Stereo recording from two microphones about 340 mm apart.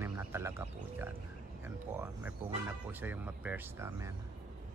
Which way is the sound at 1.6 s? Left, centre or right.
Centre.